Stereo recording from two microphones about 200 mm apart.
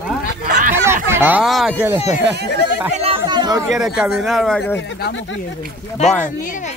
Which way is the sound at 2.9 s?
25° right (ahead or behind).